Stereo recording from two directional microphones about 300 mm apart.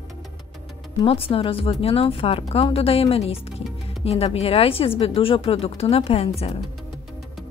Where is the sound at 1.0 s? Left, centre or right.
Centre.